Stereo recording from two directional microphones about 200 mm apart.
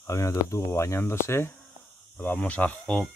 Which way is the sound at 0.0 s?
15° left (ahead or behind).